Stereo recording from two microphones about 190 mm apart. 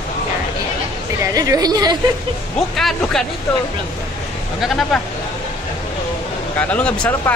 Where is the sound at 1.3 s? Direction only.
20° right (ahead or behind).